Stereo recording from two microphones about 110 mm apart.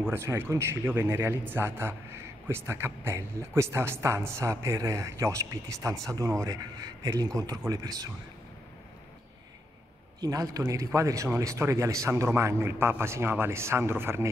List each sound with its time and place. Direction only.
0.1 s a man's voice: 20° right (ahead or behind)
10.2 s speech: 35° right (ahead or behind)